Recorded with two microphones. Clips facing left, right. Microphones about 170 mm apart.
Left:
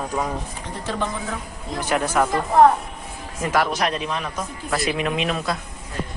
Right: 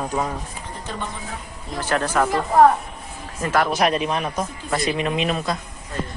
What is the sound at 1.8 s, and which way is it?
Speech, 10° left (ahead or behind).